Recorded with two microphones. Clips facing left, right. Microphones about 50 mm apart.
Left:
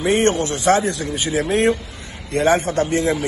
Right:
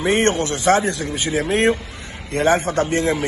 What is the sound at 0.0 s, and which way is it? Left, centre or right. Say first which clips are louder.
A man's voice: left 1 dB; right.